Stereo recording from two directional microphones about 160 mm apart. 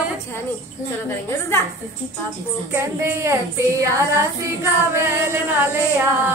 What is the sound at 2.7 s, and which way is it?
Female singing, 15° right (ahead or behind).